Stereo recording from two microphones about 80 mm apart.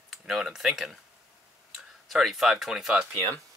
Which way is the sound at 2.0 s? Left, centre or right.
Centre.